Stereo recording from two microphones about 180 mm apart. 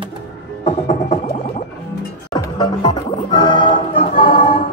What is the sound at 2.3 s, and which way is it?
Music, 25° left (ahead or behind).